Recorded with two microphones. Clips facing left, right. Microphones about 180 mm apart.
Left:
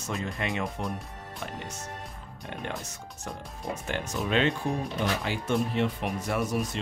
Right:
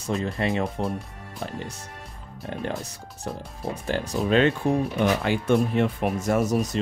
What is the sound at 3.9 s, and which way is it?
Speech, 35° right (ahead or behind).